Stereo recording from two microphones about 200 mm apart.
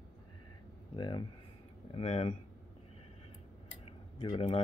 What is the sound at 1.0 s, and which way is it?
Speech, 20° left (ahead or behind).